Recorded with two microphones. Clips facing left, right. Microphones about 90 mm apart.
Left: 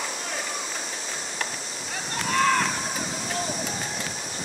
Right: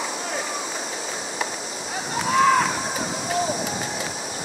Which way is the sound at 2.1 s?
10° right (ahead or behind).